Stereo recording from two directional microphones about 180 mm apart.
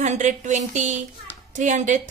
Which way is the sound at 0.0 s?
40° right (ahead or behind).